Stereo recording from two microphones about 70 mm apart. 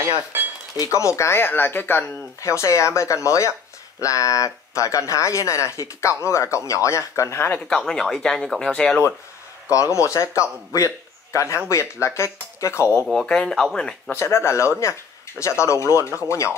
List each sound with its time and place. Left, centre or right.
0.7 s speech: left
2.4 s speech: left
7.3 s speech: left
7.6 s speech: centre
9.7 s speech: left
13.0 s speech: centre
14.1 s speech: left